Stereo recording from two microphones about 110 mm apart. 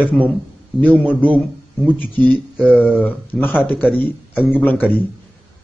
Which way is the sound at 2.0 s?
15° left (ahead or behind).